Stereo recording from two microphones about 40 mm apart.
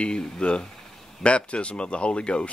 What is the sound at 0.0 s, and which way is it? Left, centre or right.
Speech, left.